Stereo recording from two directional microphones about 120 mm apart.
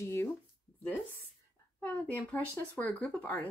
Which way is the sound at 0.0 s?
20° left (ahead or behind).